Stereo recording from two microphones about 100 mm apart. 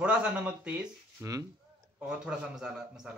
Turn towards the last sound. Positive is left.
turn(degrees=-5)  # may be behind; listen again after turning